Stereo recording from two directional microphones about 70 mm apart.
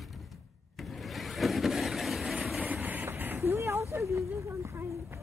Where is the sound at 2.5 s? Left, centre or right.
Centre; by 4.0 s right.